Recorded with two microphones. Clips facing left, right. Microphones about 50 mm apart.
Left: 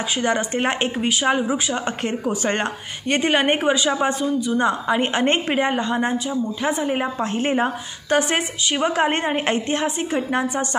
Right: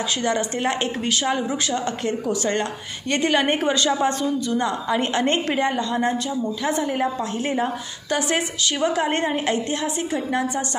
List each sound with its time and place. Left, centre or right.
0.2 s a woman's voice: left
2.2 s a woman's voice: left
3.6 s a woman's voice: centre; by 10.8 s left